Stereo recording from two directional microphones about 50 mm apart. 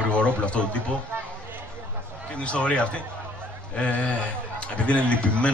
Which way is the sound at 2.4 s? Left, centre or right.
Left.